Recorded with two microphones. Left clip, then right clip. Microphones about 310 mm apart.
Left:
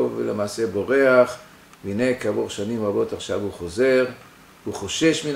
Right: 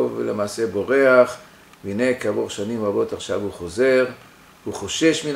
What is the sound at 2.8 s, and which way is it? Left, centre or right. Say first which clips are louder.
Speech: right 1 dB; centre.